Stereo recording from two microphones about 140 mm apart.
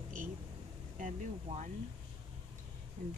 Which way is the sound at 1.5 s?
50° right (ahead or behind).